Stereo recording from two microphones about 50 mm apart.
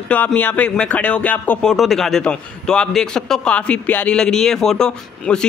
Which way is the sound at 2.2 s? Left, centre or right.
Centre.